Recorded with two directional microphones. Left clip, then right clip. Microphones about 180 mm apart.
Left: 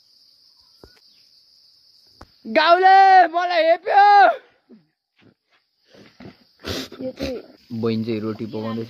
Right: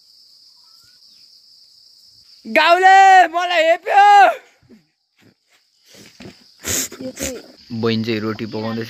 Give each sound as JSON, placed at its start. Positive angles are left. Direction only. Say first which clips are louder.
{"t": 2.4, "sound": "speech", "louder": "right 2 dB", "side_deg": -5}
{"t": 6.6, "sound": "wheeze", "louder": "right 4 dB", "side_deg": -5}
{"t": 7.8, "sound": "speech", "louder": "right 4 dB", "side_deg": 0}